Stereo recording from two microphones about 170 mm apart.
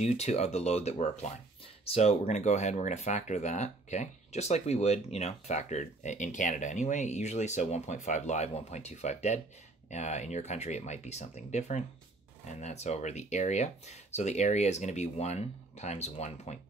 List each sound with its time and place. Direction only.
0.0 s speech: 40° left (ahead or behind)